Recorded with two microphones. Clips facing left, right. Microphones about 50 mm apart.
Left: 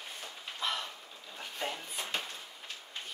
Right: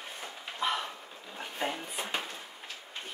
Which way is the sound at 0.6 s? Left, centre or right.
Right.